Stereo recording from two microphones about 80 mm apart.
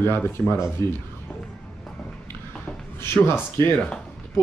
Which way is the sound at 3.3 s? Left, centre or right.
Left.